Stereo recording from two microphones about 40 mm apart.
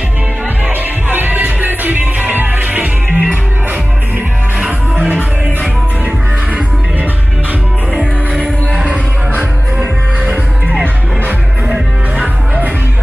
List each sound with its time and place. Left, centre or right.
1.0 s music: right
8.0 s music: right